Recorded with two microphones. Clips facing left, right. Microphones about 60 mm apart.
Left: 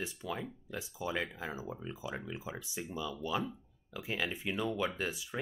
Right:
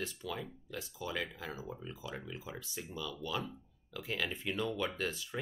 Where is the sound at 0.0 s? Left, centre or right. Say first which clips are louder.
Left 1 dB; centre.